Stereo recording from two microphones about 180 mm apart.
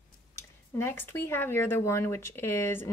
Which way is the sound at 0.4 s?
15° left (ahead or behind).